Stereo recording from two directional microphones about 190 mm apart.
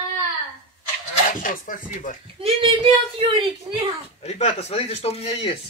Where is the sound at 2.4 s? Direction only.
30° right (ahead or behind).